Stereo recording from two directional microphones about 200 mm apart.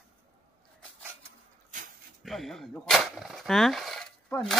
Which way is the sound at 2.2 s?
Centre (ahead or behind).